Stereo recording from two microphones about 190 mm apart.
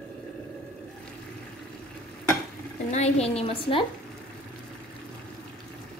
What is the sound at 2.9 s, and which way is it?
Speech, 35° left (ahead or behind).